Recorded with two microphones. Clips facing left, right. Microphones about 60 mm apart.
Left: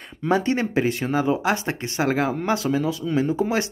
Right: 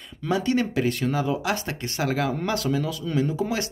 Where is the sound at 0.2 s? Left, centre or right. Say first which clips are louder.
Left 2 dB; left.